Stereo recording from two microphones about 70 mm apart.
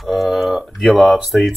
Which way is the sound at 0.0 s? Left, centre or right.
Centre.